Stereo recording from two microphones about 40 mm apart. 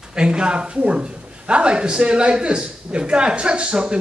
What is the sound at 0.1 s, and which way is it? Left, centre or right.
A man's voice, right.